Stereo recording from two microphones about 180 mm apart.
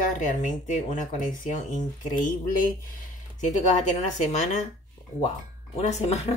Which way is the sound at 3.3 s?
40° left (ahead or behind).